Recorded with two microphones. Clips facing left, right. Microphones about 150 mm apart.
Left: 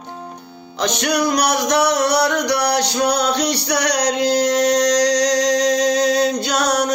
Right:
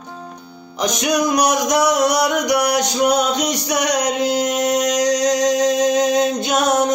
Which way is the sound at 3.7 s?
75° left (ahead or behind).